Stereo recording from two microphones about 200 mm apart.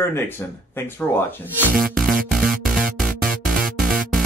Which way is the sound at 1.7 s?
45° right (ahead or behind).